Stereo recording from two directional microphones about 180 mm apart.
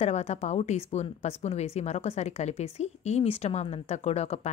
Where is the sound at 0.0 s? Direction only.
35° left (ahead or behind).